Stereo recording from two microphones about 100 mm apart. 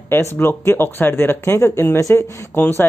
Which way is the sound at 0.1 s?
25° left (ahead or behind).